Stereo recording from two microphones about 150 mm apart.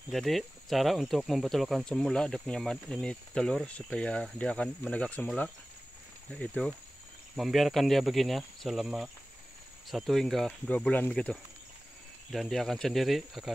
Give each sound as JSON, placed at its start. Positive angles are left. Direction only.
{"t": 0.1, "sound": "speech", "side_deg": 0}